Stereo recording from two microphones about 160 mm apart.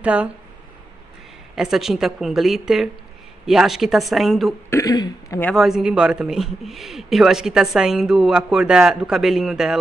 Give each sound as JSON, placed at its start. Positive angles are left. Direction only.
{"t": 0.0, "sound": "speech", "side_deg": -10}
{"t": 1.5, "sound": "a man's voice", "side_deg": 0}
{"t": 4.6, "sound": "speech", "side_deg": 20}
{"t": 5.4, "sound": "a man's voice", "side_deg": 0}